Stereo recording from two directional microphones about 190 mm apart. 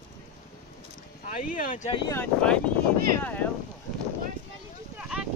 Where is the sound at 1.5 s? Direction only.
45° left (ahead or behind).